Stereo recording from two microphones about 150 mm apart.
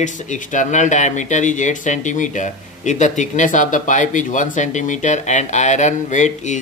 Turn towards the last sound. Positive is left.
turn(degrees=50)  # may be behind; listen again after turning